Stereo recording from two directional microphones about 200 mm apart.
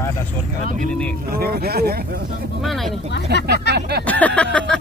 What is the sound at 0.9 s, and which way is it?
Speech, 5° left (ahead or behind).